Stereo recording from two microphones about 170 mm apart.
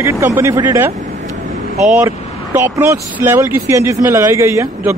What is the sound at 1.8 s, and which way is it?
A man's voice, 5° right (ahead or behind).